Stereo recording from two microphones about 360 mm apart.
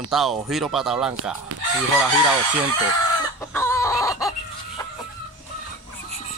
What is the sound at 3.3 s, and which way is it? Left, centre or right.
Chicken, centre.